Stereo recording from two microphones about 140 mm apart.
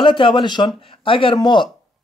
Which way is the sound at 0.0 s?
35° left (ahead or behind).